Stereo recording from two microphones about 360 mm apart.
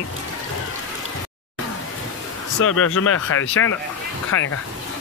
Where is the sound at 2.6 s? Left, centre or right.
Left.